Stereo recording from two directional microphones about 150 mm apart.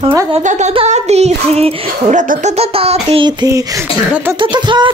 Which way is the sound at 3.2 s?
20° right (ahead or behind).